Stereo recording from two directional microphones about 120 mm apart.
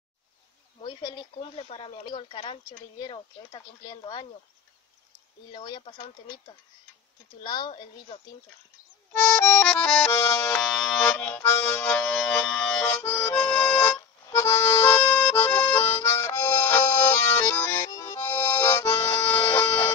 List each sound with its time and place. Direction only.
0.7 s speech: 40° left (ahead or behind)
3.0 s speech: 35° left (ahead or behind)
5.5 s speech: 40° left (ahead or behind)
7.4 s speech: 35° left (ahead or behind)
9.1 s music: 10° left (ahead or behind)
14.3 s accordion: 20° left (ahead or behind)
15.1 s music: 10° left (ahead or behind)